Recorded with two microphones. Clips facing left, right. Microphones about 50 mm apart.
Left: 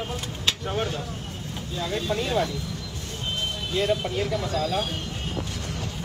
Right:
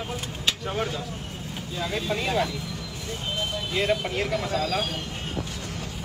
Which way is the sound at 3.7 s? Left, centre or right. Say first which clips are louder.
Left 1 dB; right.